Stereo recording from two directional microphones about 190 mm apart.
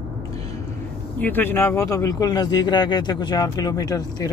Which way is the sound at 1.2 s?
10° left (ahead or behind).